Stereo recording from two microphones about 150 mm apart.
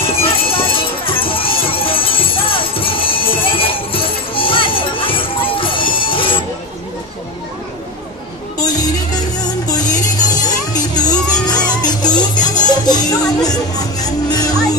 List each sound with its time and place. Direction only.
0.0 s music: 40° left (ahead or behind)
8.5 s music: 25° left (ahead or behind)